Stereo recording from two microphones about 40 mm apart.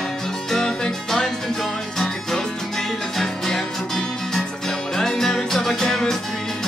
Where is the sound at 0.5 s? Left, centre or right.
Centre.